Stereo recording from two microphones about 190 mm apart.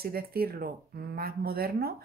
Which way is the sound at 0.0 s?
50° right (ahead or behind).